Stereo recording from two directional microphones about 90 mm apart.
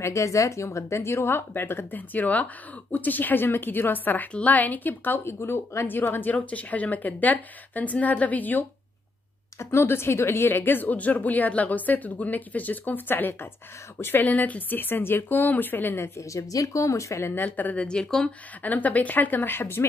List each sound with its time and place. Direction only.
0.0 s a woman's voice: 35° left (ahead or behind)
16.2 s speech: 35° left (ahead or behind)
17.3 s a woman's voice: 20° left (ahead or behind)
18.6 s a woman's voice: 20° left (ahead or behind)